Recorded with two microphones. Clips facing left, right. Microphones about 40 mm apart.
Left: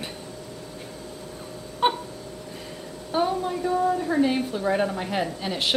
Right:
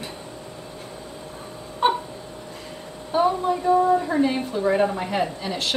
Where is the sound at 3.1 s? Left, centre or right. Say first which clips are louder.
Right 4 dB; centre.